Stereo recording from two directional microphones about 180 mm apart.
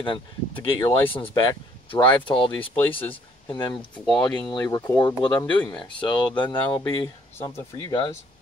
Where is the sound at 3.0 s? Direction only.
10° left (ahead or behind).